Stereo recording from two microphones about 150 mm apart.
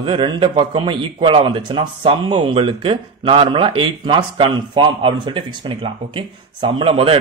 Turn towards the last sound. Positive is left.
turn(degrees=-40)  # may be behind; listen again after turning